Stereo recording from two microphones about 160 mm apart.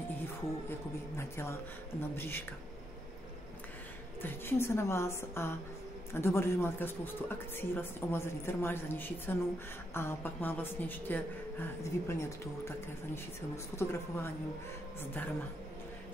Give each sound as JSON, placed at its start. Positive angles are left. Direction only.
{"t": 0.2, "sound": "a woman's voice", "side_deg": 15}
{"t": 4.2, "sound": "a woman's voice", "side_deg": 15}